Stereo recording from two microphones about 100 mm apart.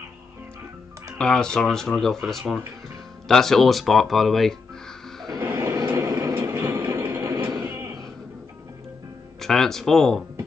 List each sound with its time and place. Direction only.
1.1 s speech: 5° left (ahead or behind)
5.4 s vehicle: 20° right (ahead or behind)
7.6 s slam: 20° right (ahead or behind)
9.4 s speech: 5° left (ahead or behind)